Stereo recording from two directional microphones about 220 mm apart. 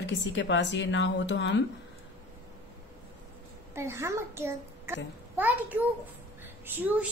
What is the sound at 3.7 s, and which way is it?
A child's voice, 10° right (ahead or behind).